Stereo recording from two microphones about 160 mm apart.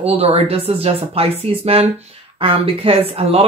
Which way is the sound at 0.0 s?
40° right (ahead or behind).